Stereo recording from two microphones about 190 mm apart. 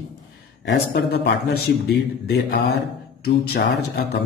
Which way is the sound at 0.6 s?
65° left (ahead or behind).